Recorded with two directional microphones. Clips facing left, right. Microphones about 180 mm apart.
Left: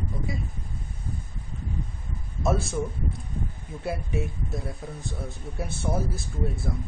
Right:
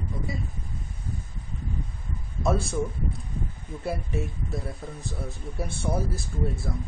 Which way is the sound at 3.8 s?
Centre (ahead or behind).